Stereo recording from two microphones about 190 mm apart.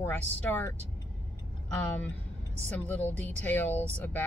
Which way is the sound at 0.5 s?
10° left (ahead or behind).